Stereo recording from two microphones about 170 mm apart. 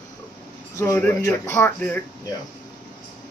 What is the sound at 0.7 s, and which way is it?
Speech, 15° left (ahead or behind).